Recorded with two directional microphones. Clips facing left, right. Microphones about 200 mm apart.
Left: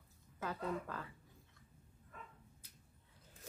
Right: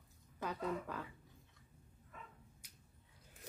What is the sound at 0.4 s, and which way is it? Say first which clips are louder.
Speech: right 1 dB; 15° right (ahead or behind).